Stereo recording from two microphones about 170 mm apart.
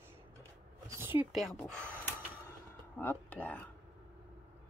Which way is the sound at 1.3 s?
Centre (ahead or behind).